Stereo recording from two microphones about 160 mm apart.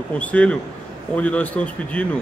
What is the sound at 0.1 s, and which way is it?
A man's voice, 10° left (ahead or behind).